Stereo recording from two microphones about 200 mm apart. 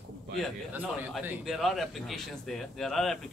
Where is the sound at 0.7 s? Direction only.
10° right (ahead or behind).